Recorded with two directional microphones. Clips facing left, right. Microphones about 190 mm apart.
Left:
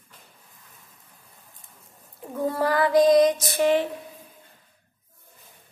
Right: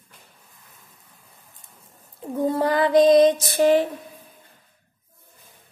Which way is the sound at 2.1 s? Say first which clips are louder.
Right 3 dB; 20° right (ahead or behind).